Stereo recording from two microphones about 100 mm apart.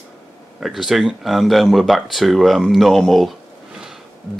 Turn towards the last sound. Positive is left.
turn(degrees=0)  # may be behind; listen again after turning